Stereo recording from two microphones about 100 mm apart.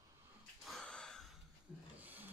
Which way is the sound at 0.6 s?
5° left (ahead or behind).